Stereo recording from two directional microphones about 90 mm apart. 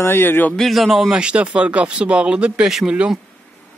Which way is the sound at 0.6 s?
Centre (ahead or behind).